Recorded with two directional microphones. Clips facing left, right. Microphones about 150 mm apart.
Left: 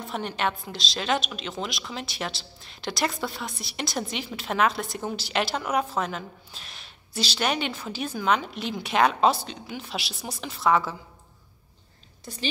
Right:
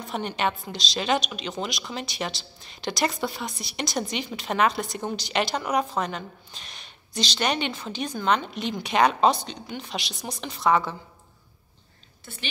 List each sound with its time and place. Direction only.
0.0 s a woman's voice: centre (ahead or behind)